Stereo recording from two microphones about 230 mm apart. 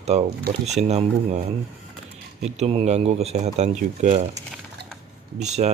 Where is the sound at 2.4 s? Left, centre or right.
Right.